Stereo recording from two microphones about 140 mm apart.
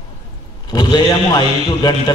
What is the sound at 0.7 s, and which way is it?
A man's voice, 30° left (ahead or behind).